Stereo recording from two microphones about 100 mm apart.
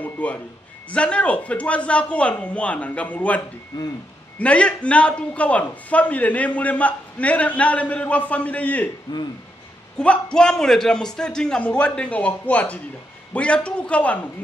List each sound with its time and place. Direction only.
0.0 s a man's voice: 15° left (ahead or behind)
3.7 s speech: 45° left (ahead or behind)
4.4 s a man's voice: 10° left (ahead or behind)
9.9 s a man's voice: 10° left (ahead or behind)